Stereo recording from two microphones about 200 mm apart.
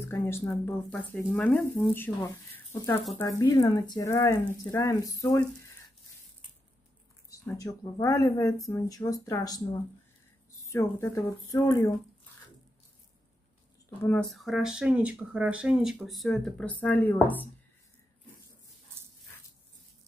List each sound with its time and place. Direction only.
0.0 s speech: 10° left (ahead or behind)
7.2 s speech: 15° left (ahead or behind)
13.8 s speech: 5° left (ahead or behind)